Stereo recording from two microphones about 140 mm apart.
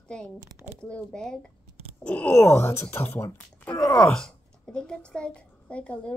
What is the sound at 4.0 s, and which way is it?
A child's voice, 5° left (ahead or behind).